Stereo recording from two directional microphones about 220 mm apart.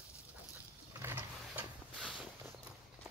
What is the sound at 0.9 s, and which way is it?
Vehicle, 10° right (ahead or behind).